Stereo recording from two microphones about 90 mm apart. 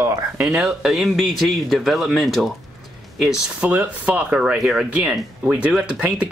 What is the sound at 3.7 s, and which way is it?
Speech, 20° right (ahead or behind).